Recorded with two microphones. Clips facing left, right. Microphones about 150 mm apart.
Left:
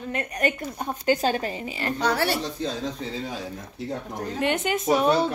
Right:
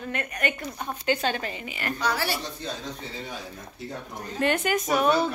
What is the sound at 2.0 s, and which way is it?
Speech, 60° left (ahead or behind).